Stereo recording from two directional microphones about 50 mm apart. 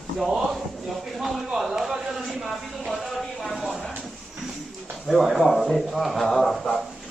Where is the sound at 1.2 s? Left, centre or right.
Centre.